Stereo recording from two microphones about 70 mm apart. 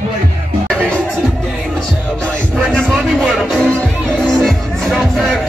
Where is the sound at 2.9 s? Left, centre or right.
Centre.